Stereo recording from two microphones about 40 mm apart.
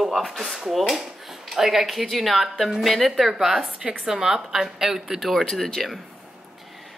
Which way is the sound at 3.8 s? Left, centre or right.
Right.